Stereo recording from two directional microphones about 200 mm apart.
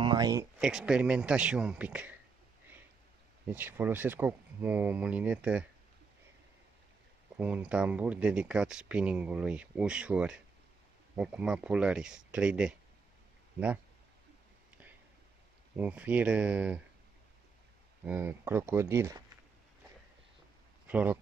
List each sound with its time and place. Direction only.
0.0 s speech: 20° right (ahead or behind)
0.6 s speech: 5° right (ahead or behind)
3.4 s speech: 10° right (ahead or behind)
7.3 s speech: 5° right (ahead or behind)
15.7 s speech: 5° right (ahead or behind)
18.0 s speech: 10° right (ahead or behind)
20.8 s speech: 10° right (ahead or behind)